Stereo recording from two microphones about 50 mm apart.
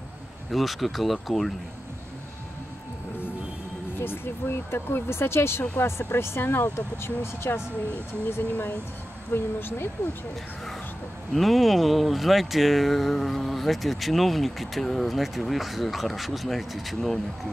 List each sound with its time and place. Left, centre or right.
0.5 s speech: centre
4.0 s speech: left
8.5 s speech: left
9.3 s speech: left
11.3 s speech: centre